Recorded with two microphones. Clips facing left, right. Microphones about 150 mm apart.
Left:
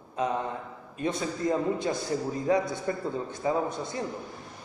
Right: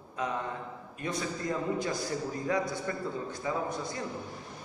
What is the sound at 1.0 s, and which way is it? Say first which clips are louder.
A man's voice: left 5 dB; 25° left (ahead or behind).